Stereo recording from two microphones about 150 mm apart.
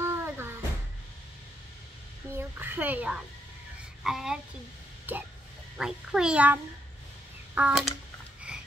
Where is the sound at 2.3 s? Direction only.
15° right (ahead or behind).